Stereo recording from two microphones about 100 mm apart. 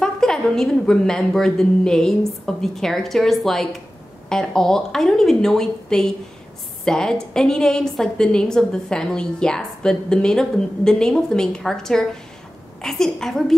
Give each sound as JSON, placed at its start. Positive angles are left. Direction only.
{"t": 0.0, "sound": "a woman's voice", "side_deg": 5}